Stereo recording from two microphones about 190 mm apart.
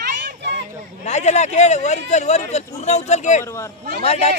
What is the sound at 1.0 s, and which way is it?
Speech, 35° left (ahead or behind).